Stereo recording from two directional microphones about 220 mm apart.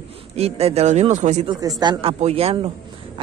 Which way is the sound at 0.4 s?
30° right (ahead or behind).